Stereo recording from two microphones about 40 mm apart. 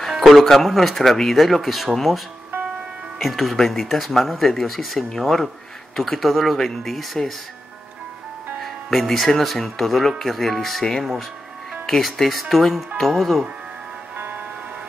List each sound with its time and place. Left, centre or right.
0.1 s speech: centre
8.5 s speech: centre
14.1 s music: right